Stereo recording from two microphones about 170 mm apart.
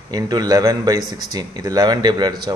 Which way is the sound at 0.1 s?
20° right (ahead or behind).